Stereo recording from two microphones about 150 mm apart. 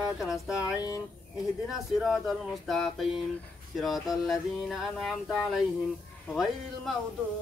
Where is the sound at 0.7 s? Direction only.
25° left (ahead or behind).